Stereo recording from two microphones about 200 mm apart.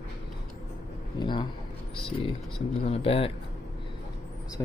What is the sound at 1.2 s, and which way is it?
Speech, 25° left (ahead or behind).